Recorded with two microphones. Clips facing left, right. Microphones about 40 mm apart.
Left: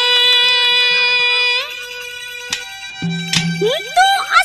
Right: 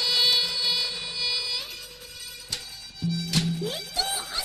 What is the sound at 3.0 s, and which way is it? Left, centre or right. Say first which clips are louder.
Music: left 8 dB; left.